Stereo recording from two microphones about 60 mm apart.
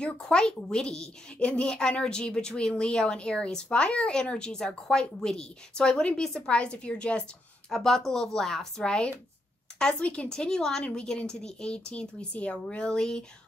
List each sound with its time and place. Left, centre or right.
0.0 s speech: centre